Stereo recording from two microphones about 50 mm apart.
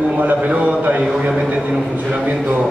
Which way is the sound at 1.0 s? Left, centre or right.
Centre.